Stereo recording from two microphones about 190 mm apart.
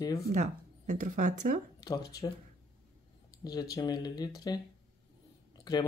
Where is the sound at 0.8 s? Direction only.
45° right (ahead or behind).